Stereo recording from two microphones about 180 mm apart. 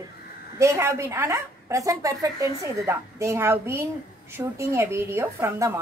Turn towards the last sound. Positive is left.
turn(degrees=-15)  # may be behind; listen again after turning